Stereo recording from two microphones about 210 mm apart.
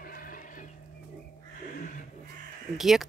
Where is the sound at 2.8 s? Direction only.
Centre (ahead or behind).